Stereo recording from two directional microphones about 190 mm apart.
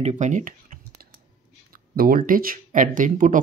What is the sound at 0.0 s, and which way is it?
Speech, 40° right (ahead or behind).